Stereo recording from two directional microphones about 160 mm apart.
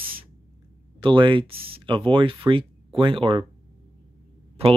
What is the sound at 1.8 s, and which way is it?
Speech, 30° right (ahead or behind).